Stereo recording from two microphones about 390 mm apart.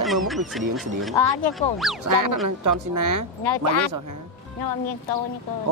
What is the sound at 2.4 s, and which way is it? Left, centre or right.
Speech, right.